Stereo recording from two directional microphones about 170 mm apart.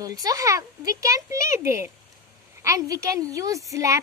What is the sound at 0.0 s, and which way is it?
A woman's voice, 20° right (ahead or behind).